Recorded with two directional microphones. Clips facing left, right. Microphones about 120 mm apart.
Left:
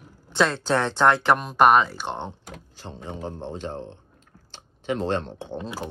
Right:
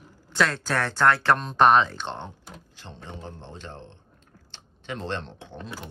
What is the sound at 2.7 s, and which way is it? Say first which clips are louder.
A man's voice: left 6 dB; 40° left (ahead or behind).